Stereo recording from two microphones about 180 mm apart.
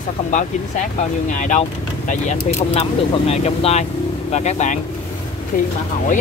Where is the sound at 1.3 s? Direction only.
45° left (ahead or behind).